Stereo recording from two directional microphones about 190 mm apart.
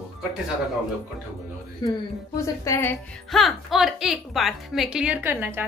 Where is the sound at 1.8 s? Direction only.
20° left (ahead or behind).